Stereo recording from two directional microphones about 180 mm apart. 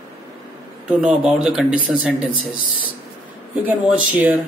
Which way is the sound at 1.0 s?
5° right (ahead or behind).